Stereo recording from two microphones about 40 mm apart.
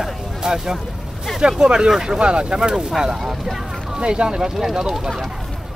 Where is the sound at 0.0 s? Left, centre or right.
Centre.